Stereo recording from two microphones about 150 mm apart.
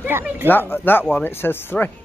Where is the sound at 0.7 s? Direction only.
15° left (ahead or behind).